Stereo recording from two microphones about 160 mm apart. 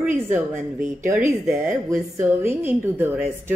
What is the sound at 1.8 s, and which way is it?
A woman's voice, 15° right (ahead or behind).